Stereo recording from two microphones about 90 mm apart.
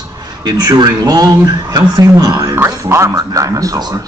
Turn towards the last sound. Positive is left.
turn(degrees=-40)  # may be behind; listen again after turning